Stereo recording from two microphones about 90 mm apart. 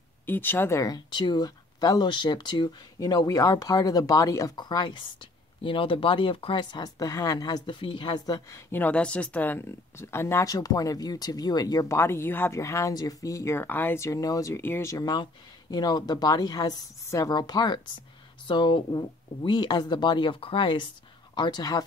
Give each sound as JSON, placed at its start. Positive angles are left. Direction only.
{"t": 0.3, "sound": "speech", "side_deg": 25}
{"t": 0.8, "sound": "speech", "side_deg": 55}
{"t": 4.6, "sound": "speech", "side_deg": 55}
{"t": 6.6, "sound": "speech", "side_deg": 55}
{"t": 7.0, "sound": "speech", "side_deg": 40}
{"t": 7.6, "sound": "speech", "side_deg": 70}
{"t": 8.5, "sound": "speech", "side_deg": 30}
{"t": 8.8, "sound": "speech", "side_deg": 15}
{"t": 13.7, "sound": "speech", "side_deg": 20}
{"t": 13.9, "sound": "speech", "side_deg": 35}
{"t": 14.5, "sound": "speech", "side_deg": 25}
{"t": 14.9, "sound": "speech", "side_deg": 45}
{"t": 21.4, "sound": "speech", "side_deg": 50}